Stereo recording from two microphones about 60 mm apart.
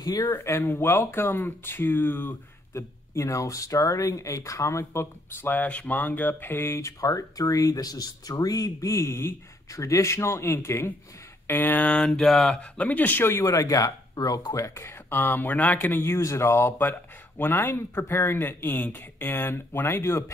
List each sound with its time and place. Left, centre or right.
0.0 s speech: left
0.4 s speech: left
3.2 s speech: left
5.4 s speech: left
6.6 s speech: left
11.4 s speech: left
12.0 s mantra: centre
12.5 s speech: left
13.3 s speech: left
15.0 s speech: left
16.1 s speech: left
17.6 s speech: left